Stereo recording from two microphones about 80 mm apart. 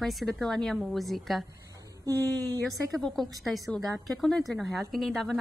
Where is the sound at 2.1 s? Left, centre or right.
Right.